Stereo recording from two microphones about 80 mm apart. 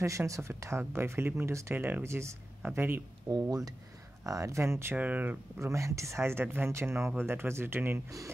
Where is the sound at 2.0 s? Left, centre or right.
Right.